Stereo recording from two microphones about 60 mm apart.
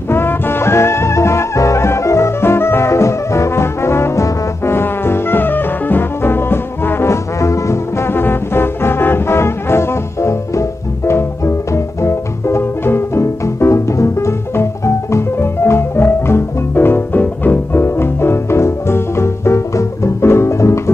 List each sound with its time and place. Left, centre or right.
0.1 s music: left
7.3 s brass instrument: left
8.1 s brass instrument: left
17.8 s music: left